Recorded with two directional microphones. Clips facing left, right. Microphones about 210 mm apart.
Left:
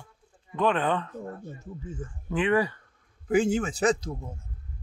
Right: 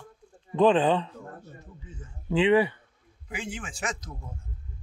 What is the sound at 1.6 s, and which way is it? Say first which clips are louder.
Speech: left 9 dB; 45° left (ahead or behind).